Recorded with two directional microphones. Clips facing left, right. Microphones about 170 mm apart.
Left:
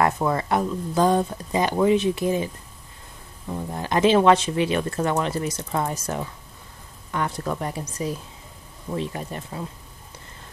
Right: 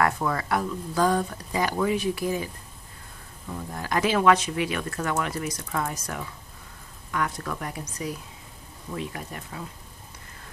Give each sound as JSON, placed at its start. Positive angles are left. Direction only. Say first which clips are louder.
{"t": 0.0, "sound": "speech", "louder": "left 3 dB", "side_deg": 25}
{"t": 8.9, "sound": "speech", "louder": "left 5 dB", "side_deg": 30}